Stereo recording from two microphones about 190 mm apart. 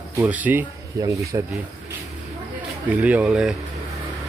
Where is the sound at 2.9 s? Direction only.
5° right (ahead or behind).